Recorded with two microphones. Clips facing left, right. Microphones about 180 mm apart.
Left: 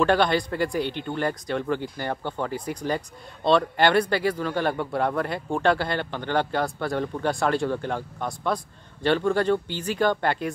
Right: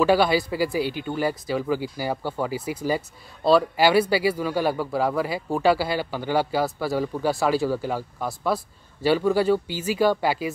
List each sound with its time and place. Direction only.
0.0 s speech: 5° right (ahead or behind)